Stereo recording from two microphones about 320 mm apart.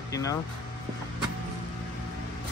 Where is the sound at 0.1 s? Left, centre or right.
Centre.